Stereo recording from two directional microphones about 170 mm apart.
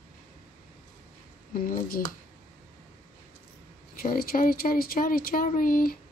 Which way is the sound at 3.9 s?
60° left (ahead or behind).